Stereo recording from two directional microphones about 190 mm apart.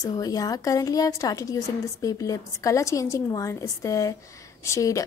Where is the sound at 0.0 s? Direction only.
20° left (ahead or behind).